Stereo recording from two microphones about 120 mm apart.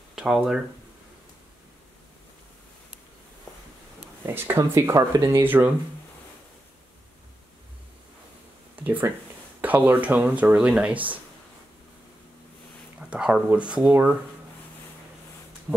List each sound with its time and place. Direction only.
0.1 s speech: 5° right (ahead or behind)
4.3 s speech: 20° right (ahead or behind)
8.7 s speech: 15° right (ahead or behind)
13.1 s speech: 10° right (ahead or behind)